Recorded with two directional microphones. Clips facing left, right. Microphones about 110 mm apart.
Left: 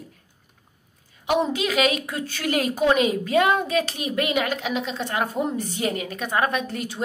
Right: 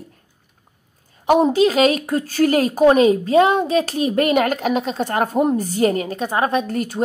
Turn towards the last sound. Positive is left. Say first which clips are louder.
# right 7 dB
turn(degrees=-45)  # may be behind; listen again after turning